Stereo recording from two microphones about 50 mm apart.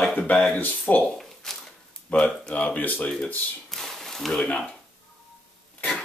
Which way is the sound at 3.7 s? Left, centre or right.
Centre.